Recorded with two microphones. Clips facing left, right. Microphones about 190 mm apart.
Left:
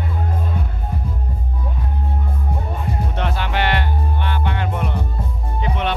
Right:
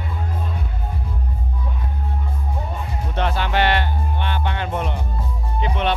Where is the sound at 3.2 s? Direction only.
30° right (ahead or behind).